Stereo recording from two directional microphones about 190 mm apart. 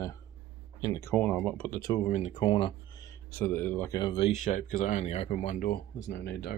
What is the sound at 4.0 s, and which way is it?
Speech, 25° left (ahead or behind).